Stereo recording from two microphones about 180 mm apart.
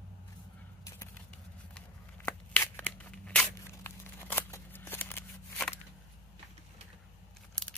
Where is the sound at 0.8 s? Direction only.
15° left (ahead or behind).